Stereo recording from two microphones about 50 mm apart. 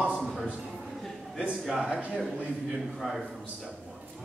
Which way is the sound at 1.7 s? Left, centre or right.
Centre.